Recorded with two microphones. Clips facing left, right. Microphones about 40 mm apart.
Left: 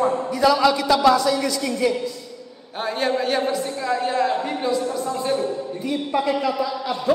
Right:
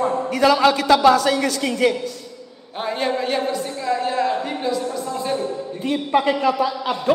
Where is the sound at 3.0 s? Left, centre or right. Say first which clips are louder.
Left 1 dB; centre.